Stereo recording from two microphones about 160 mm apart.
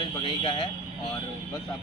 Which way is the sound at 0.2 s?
30° left (ahead or behind).